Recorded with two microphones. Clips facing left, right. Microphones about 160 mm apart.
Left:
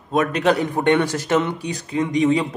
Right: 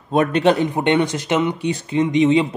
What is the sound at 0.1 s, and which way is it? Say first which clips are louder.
Speech: right 3 dB; 30° right (ahead or behind).